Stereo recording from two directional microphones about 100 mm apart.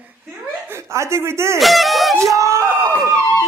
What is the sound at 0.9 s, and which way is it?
Speech, 25° right (ahead or behind).